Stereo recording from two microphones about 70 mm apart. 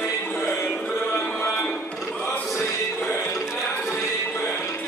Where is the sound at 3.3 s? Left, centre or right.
Centre.